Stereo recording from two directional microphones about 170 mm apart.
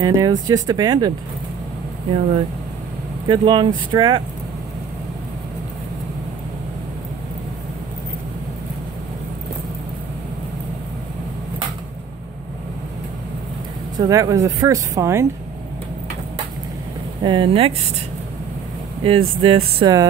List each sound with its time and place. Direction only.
0.0 s speech: 20° right (ahead or behind)
3.3 s speech: 30° right (ahead or behind)
13.9 s speech: 20° right (ahead or behind)
17.2 s speech: 30° right (ahead or behind)
19.0 s speech: 30° right (ahead or behind)